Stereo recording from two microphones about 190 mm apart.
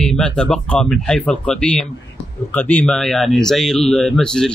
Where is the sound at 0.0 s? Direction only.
5° left (ahead or behind).